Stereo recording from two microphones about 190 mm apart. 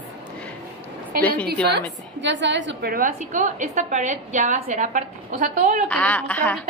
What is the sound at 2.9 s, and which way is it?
A woman's voice, 45° right (ahead or behind).